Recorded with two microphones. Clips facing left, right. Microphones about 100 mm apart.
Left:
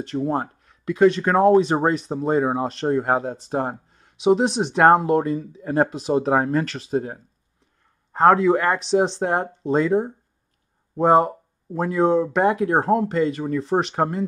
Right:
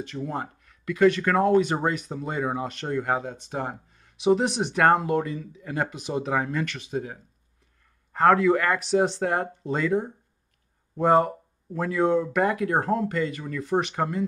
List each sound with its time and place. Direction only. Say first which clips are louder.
0.2 s speech: left 8 dB; 35° left (ahead or behind)
8.1 s speech: left 3 dB; 25° left (ahead or behind)